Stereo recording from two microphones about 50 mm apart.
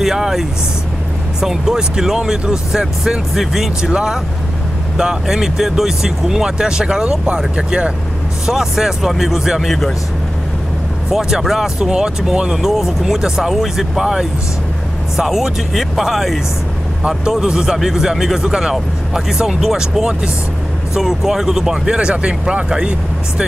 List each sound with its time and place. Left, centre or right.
0.0 s speech: centre
11.1 s speech: centre